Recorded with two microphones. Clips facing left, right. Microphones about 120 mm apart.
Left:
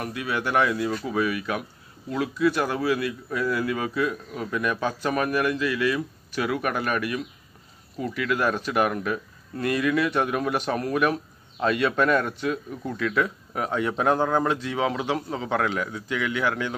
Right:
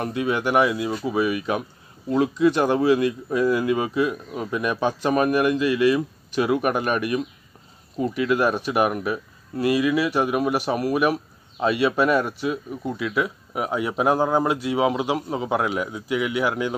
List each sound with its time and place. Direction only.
0.0 s speech: 25° right (ahead or behind)